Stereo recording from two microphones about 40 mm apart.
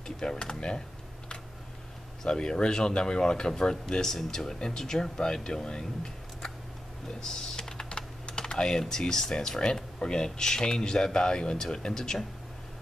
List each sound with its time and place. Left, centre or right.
0.0 s speech: centre
2.2 s speech: left
7.2 s typing: centre
9.5 s speech: centre